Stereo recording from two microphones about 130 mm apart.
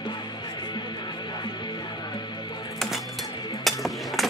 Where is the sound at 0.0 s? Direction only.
35° left (ahead or behind).